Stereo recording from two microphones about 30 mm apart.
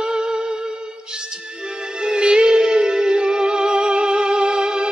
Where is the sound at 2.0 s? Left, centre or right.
Right.